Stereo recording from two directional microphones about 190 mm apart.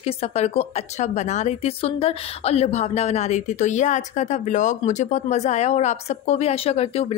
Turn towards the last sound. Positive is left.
turn(degrees=35)  # may be behind; listen again after turning